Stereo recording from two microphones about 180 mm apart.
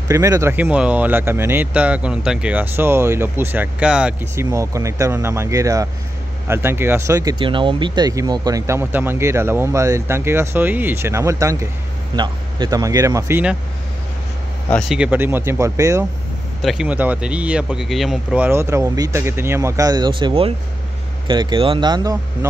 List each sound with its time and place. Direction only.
0.1 s speech: 15° right (ahead or behind)
4.5 s speech: 15° right (ahead or behind)
14.7 s speech: 5° left (ahead or behind)
15.0 s speech: 10° right (ahead or behind)
16.6 s speech: 5° right (ahead or behind); by 22.5 s 20° right (ahead or behind)